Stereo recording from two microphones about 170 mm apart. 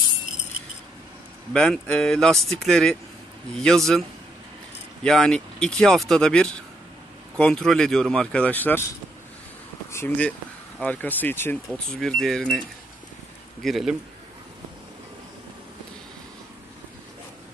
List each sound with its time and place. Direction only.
1.5 s speech: 5° left (ahead or behind)
5.0 s speech: 5° left (ahead or behind)
9.8 s speech: 15° left (ahead or behind)